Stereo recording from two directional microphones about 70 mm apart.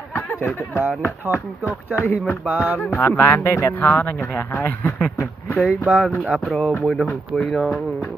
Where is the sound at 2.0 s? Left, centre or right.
Left.